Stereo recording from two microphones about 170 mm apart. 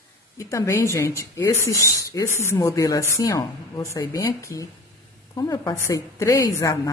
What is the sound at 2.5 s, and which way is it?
A woman's voice, 20° left (ahead or behind).